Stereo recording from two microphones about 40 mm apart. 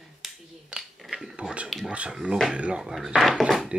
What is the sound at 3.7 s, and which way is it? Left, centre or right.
Speech, right.